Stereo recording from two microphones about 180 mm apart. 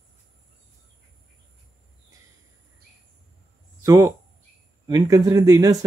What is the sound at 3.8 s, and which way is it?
Speech, 20° right (ahead or behind).